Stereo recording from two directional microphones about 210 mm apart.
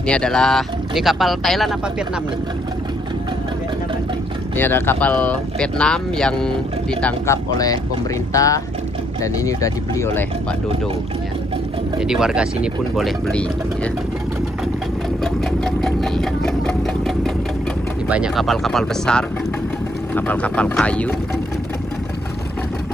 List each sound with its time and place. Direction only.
0.0 s speech: 5° left (ahead or behind)
4.6 s speech: 10° left (ahead or behind)
12.0 s speech: 5° right (ahead or behind)
15.6 s engine: centre (ahead or behind)
18.0 s speech: 5° right (ahead or behind)